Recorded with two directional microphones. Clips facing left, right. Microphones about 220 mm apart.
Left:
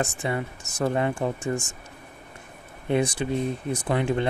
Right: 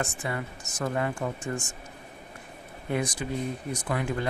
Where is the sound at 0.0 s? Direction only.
25° left (ahead or behind).